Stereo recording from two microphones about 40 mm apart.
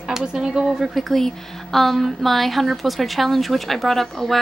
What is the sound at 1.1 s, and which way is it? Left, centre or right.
A woman's voice, centre.